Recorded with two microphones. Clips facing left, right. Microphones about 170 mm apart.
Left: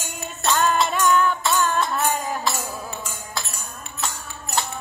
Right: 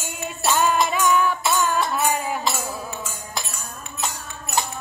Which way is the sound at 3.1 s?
20° right (ahead or behind).